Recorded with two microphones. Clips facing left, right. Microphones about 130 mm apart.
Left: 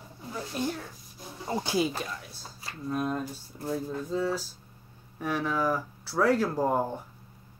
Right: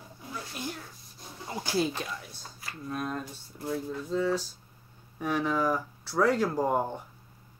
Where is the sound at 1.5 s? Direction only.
25° left (ahead or behind).